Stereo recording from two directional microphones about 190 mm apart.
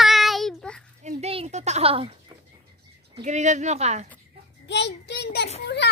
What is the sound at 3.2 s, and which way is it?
Speech, 40° right (ahead or behind).